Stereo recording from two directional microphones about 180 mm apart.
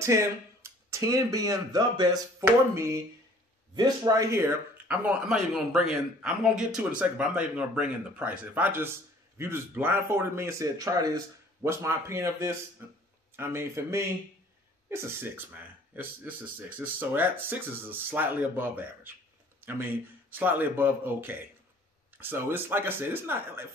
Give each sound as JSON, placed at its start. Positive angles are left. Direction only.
{"t": 0.0, "sound": "speech", "side_deg": -15}